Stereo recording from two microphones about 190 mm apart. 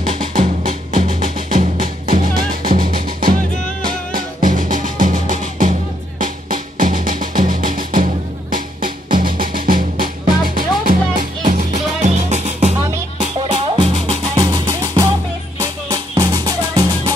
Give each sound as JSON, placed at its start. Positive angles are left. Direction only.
{"t": 0.7, "sound": "music", "side_deg": -40}
{"t": 14.4, "sound": "music", "side_deg": -20}